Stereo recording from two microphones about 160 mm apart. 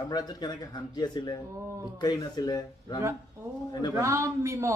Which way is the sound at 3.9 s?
20° right (ahead or behind).